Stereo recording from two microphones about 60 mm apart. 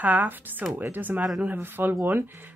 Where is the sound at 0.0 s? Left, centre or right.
Right.